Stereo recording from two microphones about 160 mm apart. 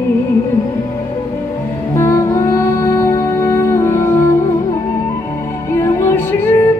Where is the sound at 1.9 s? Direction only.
15° left (ahead or behind).